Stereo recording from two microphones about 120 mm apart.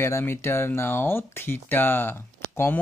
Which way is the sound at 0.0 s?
20° left (ahead or behind).